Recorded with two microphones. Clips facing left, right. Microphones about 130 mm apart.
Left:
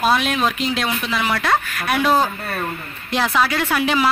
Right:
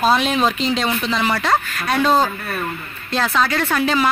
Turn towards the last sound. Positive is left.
turn(degrees=10)  # may be behind; listen again after turning